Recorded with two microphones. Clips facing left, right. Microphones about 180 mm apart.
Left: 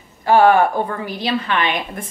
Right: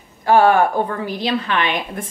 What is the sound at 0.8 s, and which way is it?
A woman's voice, 5° left (ahead or behind).